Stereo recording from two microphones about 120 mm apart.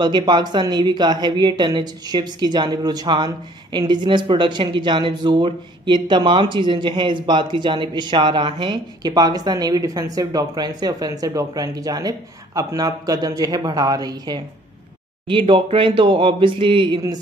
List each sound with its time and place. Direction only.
0.0 s speech: 40° right (ahead or behind)
15.2 s speech: 45° right (ahead or behind)